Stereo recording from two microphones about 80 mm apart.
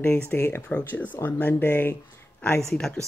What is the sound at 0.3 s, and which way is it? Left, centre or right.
Speech, left.